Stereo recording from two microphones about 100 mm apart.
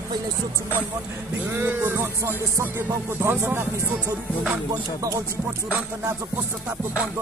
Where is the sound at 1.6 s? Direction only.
20° right (ahead or behind).